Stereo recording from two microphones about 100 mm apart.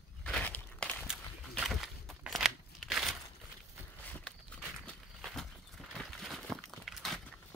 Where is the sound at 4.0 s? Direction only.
15° left (ahead or behind).